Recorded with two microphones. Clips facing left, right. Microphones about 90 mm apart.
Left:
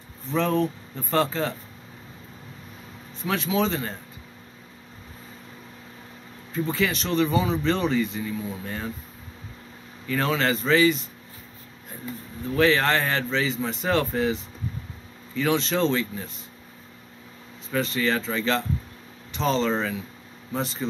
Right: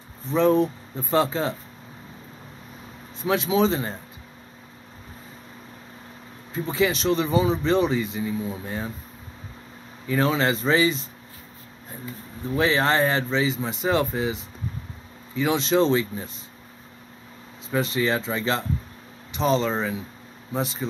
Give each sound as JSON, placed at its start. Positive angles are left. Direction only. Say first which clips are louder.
{"t": 0.3, "sound": "speech", "louder": "right 4 dB", "side_deg": -15}
{"t": 3.3, "sound": "speech", "louder": "right 3 dB", "side_deg": -20}
{"t": 6.5, "sound": "speech", "louder": "right 2 dB", "side_deg": -20}
{"t": 10.0, "sound": "speech", "louder": "right 2 dB", "side_deg": -15}
{"t": 12.5, "sound": "speech", "louder": "even", "side_deg": -20}
{"t": 17.6, "sound": "speech", "louder": "right 1 dB", "side_deg": -20}